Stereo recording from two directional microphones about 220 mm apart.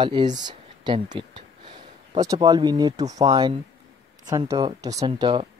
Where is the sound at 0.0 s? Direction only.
20° right (ahead or behind).